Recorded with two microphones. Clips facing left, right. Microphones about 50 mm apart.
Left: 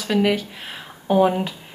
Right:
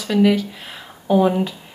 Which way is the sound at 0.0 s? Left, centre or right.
Left.